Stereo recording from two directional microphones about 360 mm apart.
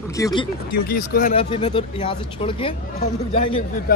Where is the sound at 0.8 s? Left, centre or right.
Left.